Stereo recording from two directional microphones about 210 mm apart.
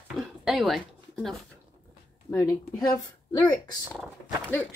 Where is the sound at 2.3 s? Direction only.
15° left (ahead or behind).